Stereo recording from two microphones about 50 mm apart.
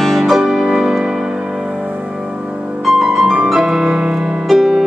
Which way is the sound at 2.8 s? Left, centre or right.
Centre.